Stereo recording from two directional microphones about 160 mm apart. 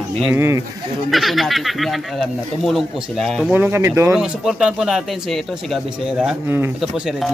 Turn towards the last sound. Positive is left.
turn(degrees=0)  # may be behind; listen again after turning